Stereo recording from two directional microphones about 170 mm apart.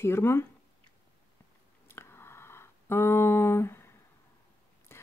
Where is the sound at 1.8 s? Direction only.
15° left (ahead or behind).